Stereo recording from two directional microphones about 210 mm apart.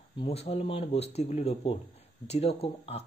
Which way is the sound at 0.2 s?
30° left (ahead or behind).